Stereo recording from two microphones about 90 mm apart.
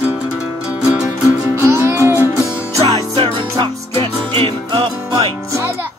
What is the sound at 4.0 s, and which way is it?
Music, 80° right.